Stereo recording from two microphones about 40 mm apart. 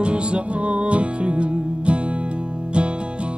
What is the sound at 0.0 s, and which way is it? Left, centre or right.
Music, right.